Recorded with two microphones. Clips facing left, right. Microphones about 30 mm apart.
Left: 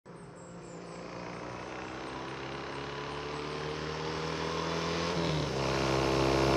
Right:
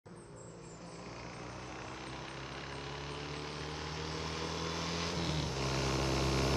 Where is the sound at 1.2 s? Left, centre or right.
Centre.